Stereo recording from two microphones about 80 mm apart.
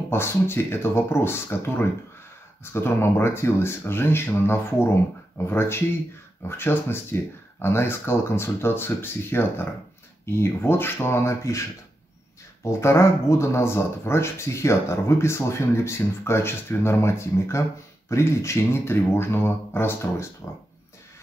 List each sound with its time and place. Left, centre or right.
0.1 s speech: left
12.6 s speech: left